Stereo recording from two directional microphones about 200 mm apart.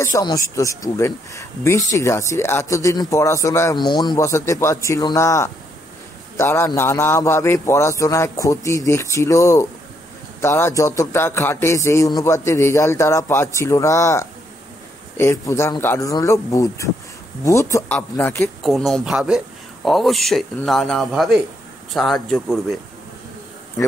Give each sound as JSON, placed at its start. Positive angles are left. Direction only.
{"t": 0.0, "sound": "speech", "side_deg": 15}
{"t": 18.6, "sound": "speech", "side_deg": 0}